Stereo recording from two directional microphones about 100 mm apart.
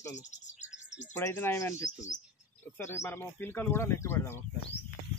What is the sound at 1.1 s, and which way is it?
Speech, 25° left (ahead or behind).